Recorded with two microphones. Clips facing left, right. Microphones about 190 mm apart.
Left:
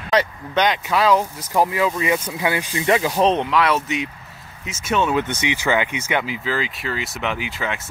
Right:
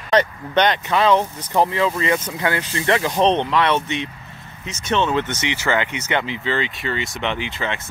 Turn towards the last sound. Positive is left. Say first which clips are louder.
# right 1 dB
turn(degrees=5)  # may be behind; listen again after turning